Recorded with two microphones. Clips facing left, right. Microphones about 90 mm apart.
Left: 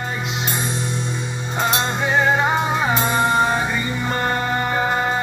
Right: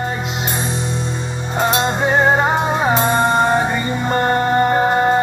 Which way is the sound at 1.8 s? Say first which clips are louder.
Right 3 dB; 35° right (ahead or behind).